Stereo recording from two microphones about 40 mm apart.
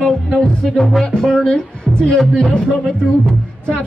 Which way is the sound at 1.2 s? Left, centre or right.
Centre.